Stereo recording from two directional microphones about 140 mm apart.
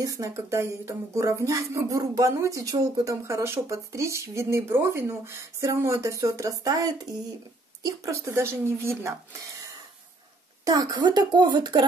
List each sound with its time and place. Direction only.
0.0 s speech: 25° right (ahead or behind)
10.6 s speech: 25° right (ahead or behind)